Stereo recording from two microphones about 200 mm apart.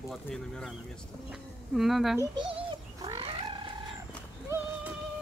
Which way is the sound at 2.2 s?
25° right (ahead or behind).